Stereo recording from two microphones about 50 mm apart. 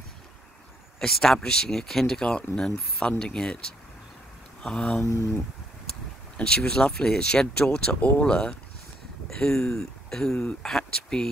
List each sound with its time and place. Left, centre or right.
0.9 s speech: centre
4.6 s speech: centre
5.0 s speech: left
6.3 s speech: centre
9.3 s speech: centre
10.8 s a sound: centre